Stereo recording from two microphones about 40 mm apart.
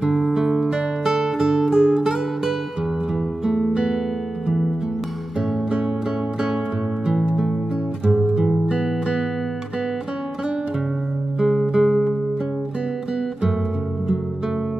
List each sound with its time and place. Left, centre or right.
0.1 s music: centre
3.7 s music: centre
7.2 s music: centre
8.1 s music: centre
11.3 s music: centre